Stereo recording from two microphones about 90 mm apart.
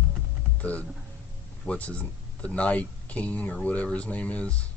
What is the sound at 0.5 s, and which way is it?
Music, 15° left (ahead or behind).